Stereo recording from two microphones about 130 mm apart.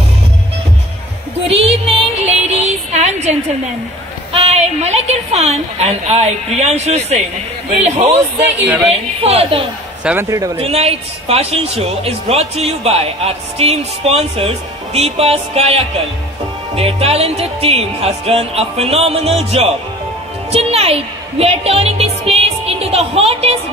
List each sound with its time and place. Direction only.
1.5 s music: 50° right (ahead or behind)
4.3 s a woman's voice: 55° right (ahead or behind)
9.2 s a woman's voice: 50° right (ahead or behind)
10.3 s speech: 25° right (ahead or behind)
10.6 s a woman's voice: 50° right (ahead or behind)